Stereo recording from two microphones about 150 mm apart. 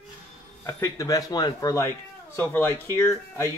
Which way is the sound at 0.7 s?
20° left (ahead or behind).